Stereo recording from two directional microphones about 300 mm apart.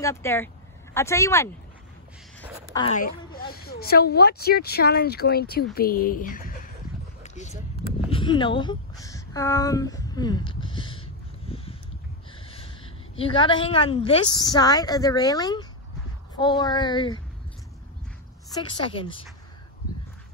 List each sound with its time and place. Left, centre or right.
0.0 s speech: centre
2.7 s a woman's voice: centre
3.3 s speech: left
7.2 s a sound: left
12.4 s a woman's voice: centre
18.5 s speech: centre